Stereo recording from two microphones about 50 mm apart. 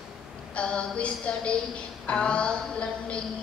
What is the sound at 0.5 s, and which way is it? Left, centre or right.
A woman's voice, centre.